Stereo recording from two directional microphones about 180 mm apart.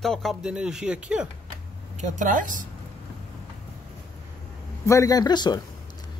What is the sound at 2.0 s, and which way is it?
Speech, 45° right (ahead or behind).